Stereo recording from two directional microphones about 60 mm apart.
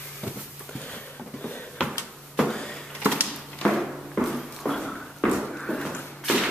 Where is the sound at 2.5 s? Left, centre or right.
Centre.